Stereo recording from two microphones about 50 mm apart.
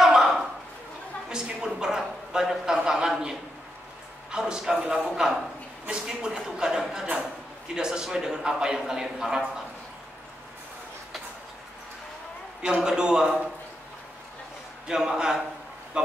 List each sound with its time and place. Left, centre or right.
0.0 s a sound: centre
4.3 s a man's voice: centre
12.6 s a man's voice: centre
14.9 s a man's voice: centre